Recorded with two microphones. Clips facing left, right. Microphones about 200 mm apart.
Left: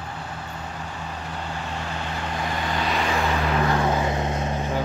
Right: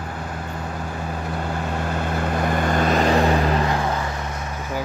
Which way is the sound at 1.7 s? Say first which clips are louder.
Right 6 dB; 50° right (ahead or behind).